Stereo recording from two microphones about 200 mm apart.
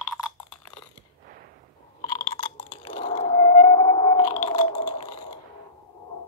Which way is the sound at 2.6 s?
25° left (ahead or behind).